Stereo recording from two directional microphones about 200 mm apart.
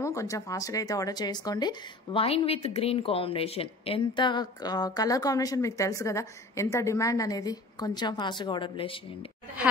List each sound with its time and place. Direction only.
0.0 s speech: 15° left (ahead or behind)